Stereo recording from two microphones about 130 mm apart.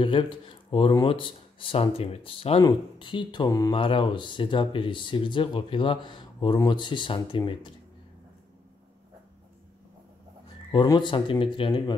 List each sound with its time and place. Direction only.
0.0 s speech: 40° left (ahead or behind)
2.6 s speech: 35° left (ahead or behind)
3.7 s speech: 40° left (ahead or behind)
10.7 s speech: 35° left (ahead or behind)